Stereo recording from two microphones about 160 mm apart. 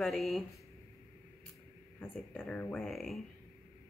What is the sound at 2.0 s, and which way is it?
A woman's voice, 10° left (ahead or behind).